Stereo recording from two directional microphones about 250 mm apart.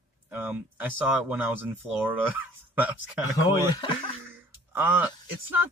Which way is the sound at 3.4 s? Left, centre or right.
Centre.